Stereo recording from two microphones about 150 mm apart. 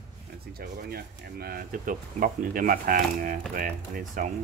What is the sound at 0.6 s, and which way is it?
Speech, 90° right.